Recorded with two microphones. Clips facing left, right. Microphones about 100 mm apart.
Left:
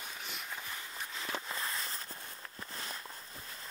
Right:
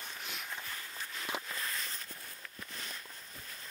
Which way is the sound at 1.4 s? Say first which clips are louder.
Left 2 dB; 25° left (ahead or behind).